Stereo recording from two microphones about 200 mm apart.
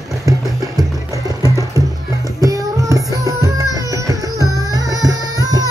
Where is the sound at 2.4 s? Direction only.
15° right (ahead or behind).